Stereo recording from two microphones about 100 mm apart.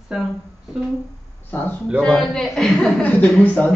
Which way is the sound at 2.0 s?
5° left (ahead or behind).